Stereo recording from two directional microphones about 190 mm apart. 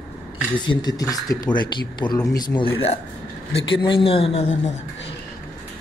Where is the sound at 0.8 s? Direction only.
20° left (ahead or behind).